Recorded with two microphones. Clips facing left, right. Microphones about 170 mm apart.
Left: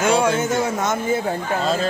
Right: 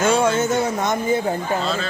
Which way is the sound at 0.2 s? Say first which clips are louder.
Right 1 dB; 10° left (ahead or behind).